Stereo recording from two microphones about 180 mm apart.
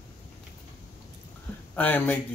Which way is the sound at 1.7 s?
10° left (ahead or behind).